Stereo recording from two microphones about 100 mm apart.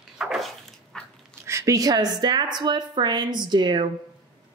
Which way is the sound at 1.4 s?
30° right (ahead or behind).